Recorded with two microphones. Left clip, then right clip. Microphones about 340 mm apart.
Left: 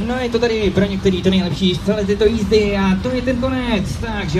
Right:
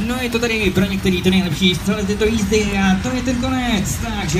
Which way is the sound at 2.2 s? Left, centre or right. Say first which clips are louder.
Left 3 dB; left.